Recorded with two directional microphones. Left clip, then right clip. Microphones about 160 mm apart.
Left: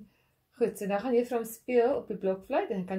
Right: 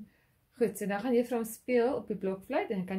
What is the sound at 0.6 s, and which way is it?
A woman's voice, 15° right (ahead or behind).